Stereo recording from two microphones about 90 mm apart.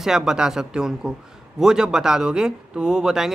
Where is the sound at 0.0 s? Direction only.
5° right (ahead or behind).